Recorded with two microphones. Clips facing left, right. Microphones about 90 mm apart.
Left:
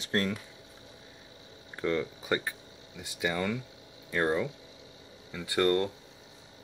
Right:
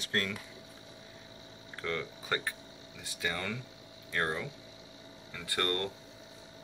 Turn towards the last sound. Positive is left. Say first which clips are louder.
# left 7 dB
turn(degrees=10)  # may be behind; listen again after turning